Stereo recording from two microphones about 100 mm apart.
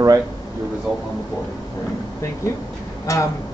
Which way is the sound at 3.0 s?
35° left (ahead or behind).